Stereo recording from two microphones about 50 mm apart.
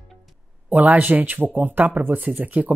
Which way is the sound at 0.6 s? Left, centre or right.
Right.